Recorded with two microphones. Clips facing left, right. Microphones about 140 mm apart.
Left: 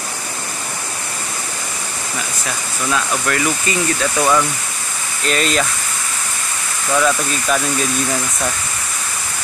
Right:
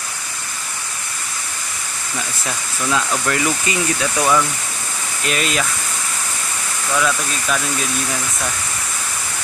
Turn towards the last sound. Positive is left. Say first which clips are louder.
# left 3 dB
turn(degrees=5)  # may be behind; listen again after turning